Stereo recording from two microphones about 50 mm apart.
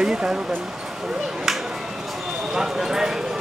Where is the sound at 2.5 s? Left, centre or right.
Centre.